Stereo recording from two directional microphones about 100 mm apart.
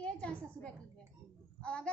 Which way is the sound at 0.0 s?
15° left (ahead or behind).